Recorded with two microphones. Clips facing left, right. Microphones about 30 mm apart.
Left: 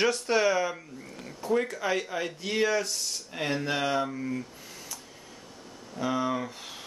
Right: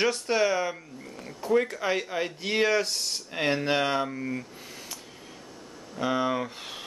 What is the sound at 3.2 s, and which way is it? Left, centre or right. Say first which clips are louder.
Speech: right 4 dB; right.